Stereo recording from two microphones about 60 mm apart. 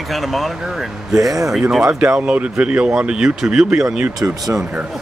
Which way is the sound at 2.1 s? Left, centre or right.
Centre.